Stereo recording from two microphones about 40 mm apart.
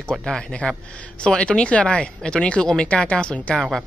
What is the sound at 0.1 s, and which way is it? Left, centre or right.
Speech, centre.